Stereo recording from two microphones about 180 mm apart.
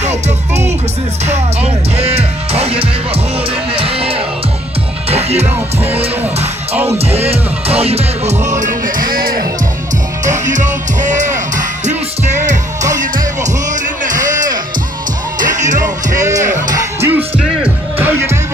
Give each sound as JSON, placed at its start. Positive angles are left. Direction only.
{"t": 1.2, "sound": "music", "side_deg": -35}
{"t": 7.1, "sound": "music", "side_deg": -35}
{"t": 8.5, "sound": "music", "side_deg": -45}
{"t": 10.4, "sound": "music", "side_deg": -45}
{"t": 14.0, "sound": "music", "side_deg": -45}
{"t": 16.6, "sound": "music", "side_deg": -20}